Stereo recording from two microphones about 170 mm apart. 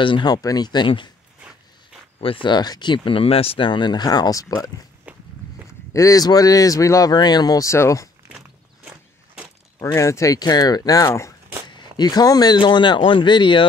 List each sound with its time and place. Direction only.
0.0 s speech: 25° left (ahead or behind)
2.4 s speech: 25° left (ahead or behind)
5.1 s walk: 10° right (ahead or behind)
5.9 s speech: 20° left (ahead or behind)
8.3 s walk: 5° right (ahead or behind)
9.8 s speech: 15° left (ahead or behind)